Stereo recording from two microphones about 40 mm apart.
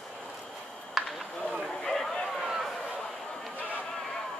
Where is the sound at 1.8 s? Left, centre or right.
Centre.